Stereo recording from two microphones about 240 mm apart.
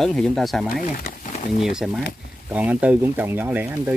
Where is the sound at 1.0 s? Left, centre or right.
Left.